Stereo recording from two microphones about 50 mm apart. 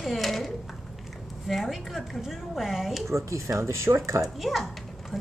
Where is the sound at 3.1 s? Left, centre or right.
Right.